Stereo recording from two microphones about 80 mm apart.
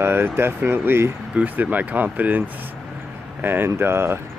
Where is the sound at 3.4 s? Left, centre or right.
Right.